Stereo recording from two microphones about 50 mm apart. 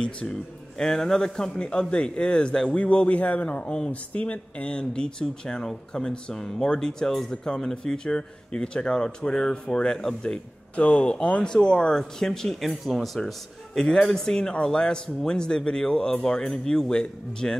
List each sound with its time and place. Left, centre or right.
0.0 s a man's voice: centre
10.8 s a man's voice: left